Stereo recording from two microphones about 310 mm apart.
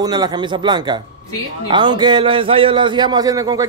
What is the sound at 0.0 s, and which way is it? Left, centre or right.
A man's voice, centre.